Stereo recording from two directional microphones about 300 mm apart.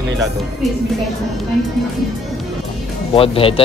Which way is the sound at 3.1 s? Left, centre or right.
Centre.